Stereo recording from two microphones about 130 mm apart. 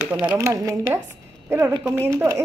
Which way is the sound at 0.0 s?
10° right (ahead or behind).